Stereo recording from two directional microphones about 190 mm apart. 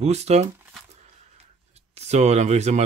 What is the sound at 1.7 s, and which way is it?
Speech, 35° right (ahead or behind).